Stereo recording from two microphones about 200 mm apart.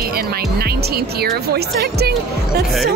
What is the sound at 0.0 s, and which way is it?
Speech, 50° right (ahead or behind).